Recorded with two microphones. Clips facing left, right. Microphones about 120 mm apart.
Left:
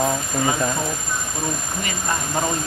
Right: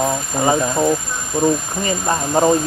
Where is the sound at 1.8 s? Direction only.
35° right (ahead or behind).